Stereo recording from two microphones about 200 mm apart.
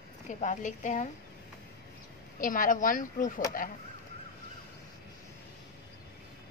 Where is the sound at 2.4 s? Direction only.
40° left (ahead or behind).